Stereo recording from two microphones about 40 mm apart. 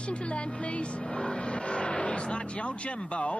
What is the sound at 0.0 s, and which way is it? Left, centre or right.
Speech, left.